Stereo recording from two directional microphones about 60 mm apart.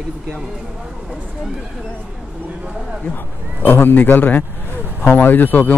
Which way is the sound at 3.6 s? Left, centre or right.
Left.